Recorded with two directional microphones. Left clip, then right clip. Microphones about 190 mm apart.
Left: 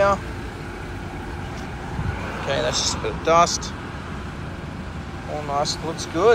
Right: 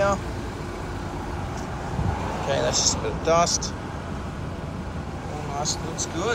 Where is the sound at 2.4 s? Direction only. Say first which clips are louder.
Left 1 dB; 15° right (ahead or behind).